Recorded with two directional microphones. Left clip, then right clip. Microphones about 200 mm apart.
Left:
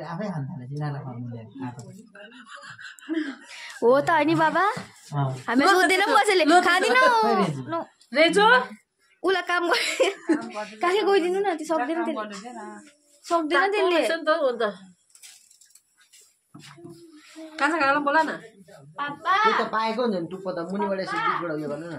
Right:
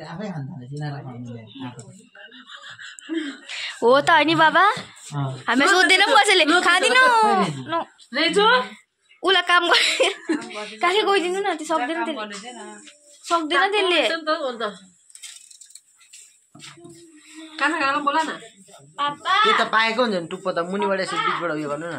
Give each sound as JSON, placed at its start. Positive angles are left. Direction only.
{"t": 2.1, "sound": "speech", "side_deg": 25}
{"t": 3.0, "sound": "a woman's voice", "side_deg": 10}
{"t": 8.1, "sound": "speech", "side_deg": 30}
{"t": 9.2, "sound": "speech", "side_deg": 5}
{"t": 13.2, "sound": "a woman's voice", "side_deg": 10}
{"t": 14.1, "sound": "a woman's voice", "side_deg": 45}
{"t": 17.6, "sound": "speech", "side_deg": 30}
{"t": 18.9, "sound": "a woman's voice", "side_deg": 50}
{"t": 19.7, "sound": "speech", "side_deg": -15}